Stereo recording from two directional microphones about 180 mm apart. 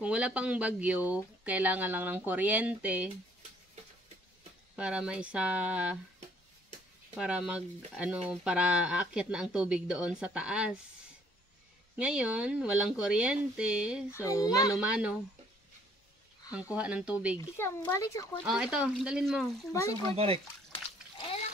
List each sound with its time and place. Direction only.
0.0 s speech: 5° right (ahead or behind)
4.7 s speech: 5° right (ahead or behind)
7.2 s speech: 5° right (ahead or behind)
12.0 s speech: 5° right (ahead or behind)
14.1 s a child's voice: 20° left (ahead or behind)
14.8 s speech: 5° right (ahead or behind)
16.7 s speech: 5° right (ahead or behind)
17.6 s speech: 15° left (ahead or behind)
18.4 s speech: 5° right (ahead or behind)